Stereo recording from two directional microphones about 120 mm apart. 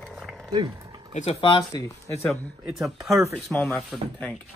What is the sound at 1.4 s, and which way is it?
Speech, 40° left (ahead or behind).